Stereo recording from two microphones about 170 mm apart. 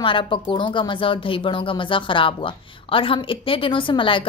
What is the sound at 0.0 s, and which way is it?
Speech, 30° left (ahead or behind).